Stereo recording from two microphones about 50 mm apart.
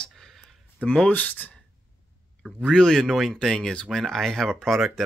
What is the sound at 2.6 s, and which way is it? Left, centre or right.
Speech, centre.